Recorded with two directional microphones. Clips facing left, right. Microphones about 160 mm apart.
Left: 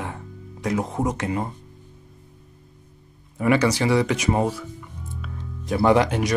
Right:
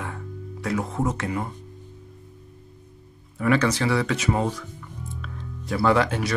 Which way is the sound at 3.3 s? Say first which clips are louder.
Left 2 dB; 15° left (ahead or behind).